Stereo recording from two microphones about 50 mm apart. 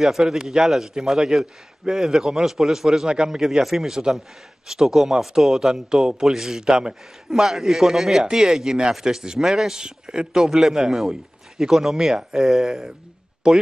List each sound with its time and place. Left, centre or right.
0.0 s a man's voice: centre